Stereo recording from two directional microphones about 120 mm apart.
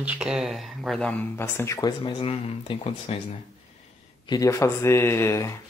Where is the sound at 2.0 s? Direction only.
50° left (ahead or behind).